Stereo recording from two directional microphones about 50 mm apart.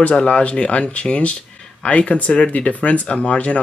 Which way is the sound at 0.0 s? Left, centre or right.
Left.